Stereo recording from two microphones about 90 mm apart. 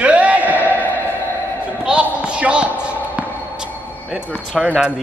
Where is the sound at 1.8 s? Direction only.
10° right (ahead or behind).